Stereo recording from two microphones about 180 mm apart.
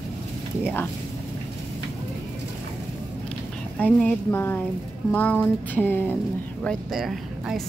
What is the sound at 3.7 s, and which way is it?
Speech, 5° left (ahead or behind).